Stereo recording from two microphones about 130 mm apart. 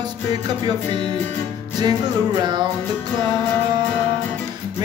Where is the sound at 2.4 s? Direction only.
35° right (ahead or behind).